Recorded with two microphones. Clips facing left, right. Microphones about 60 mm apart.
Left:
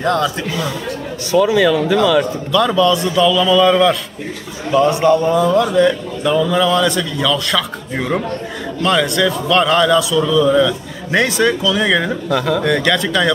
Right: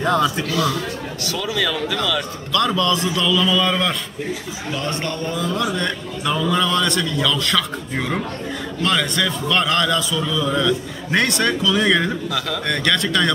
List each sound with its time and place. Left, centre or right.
0.0 s a man's voice: centre
0.5 s speech: left
2.5 s a man's voice: centre